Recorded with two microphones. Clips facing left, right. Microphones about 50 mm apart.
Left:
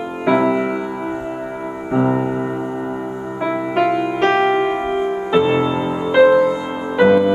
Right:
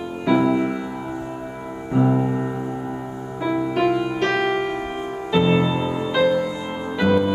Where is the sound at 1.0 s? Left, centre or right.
Left.